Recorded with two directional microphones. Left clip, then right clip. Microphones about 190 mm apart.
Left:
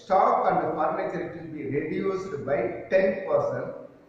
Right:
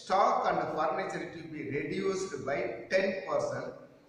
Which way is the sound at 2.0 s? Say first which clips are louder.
Left 4 dB; 15° right (ahead or behind).